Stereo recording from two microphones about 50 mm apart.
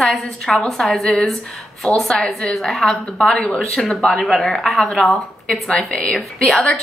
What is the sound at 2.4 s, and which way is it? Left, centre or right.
A woman's voice, centre.